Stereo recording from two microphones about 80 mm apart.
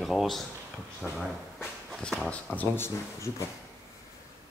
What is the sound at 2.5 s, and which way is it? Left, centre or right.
Speech, left.